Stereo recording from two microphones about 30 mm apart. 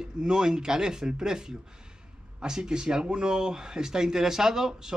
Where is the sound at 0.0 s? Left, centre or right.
Right.